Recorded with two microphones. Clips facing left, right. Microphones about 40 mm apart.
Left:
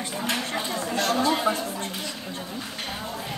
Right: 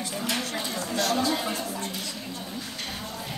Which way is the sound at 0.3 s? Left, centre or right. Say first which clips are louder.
Left 3 dB; left.